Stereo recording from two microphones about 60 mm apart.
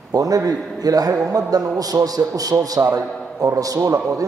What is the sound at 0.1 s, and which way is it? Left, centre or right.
A man's voice, right.